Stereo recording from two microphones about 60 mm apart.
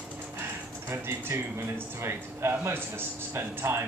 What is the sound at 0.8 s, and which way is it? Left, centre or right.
Speech, right.